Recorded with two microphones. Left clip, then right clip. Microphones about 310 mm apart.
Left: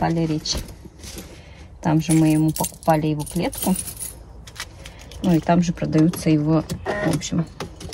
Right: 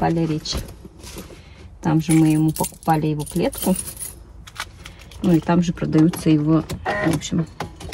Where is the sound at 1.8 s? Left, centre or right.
Centre.